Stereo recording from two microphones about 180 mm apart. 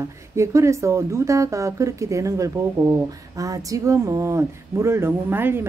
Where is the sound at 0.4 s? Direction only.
15° right (ahead or behind).